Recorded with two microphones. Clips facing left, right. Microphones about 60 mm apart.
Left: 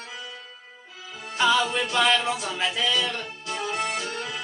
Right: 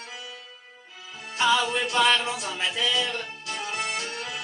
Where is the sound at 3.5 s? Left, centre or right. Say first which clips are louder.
Left 3 dB; centre.